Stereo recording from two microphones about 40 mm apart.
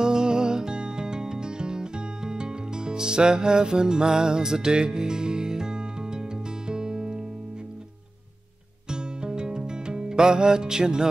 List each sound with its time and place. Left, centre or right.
0.0 s music: centre
8.9 s music: centre